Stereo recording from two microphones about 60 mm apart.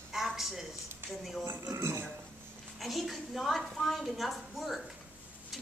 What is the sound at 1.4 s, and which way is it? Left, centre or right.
Speech, right.